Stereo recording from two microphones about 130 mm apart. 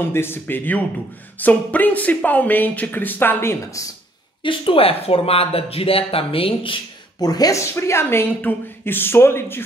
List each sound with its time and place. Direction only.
0.1 s speech: 15° left (ahead or behind)
4.4 s speech: 40° left (ahead or behind)
7.2 s speech: 30° left (ahead or behind)